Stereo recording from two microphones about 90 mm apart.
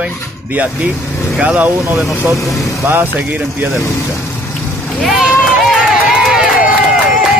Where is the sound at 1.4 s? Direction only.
15° right (ahead or behind).